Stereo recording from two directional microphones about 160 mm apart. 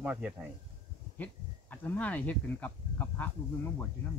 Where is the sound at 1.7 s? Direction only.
10° left (ahead or behind).